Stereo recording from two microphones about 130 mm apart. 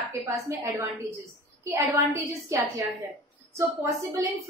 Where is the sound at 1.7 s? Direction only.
20° right (ahead or behind).